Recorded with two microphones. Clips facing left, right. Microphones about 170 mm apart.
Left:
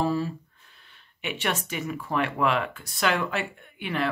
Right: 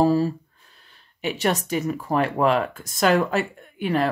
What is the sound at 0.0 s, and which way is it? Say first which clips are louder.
Speech: right 7 dB; 40° right (ahead or behind).